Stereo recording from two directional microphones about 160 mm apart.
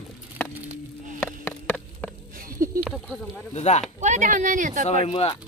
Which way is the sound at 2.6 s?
60° right (ahead or behind).